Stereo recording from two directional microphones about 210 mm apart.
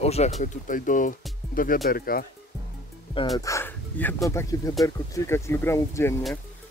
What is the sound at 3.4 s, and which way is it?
Speech, 10° left (ahead or behind).